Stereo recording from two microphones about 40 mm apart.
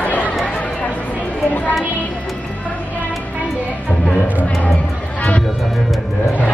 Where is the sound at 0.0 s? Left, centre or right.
Left.